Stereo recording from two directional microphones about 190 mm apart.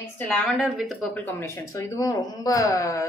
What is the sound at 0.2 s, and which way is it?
Speech, 5° left (ahead or behind).